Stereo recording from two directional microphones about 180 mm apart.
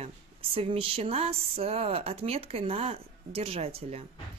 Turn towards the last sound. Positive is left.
turn(degrees=-35)  # may be behind; listen again after turning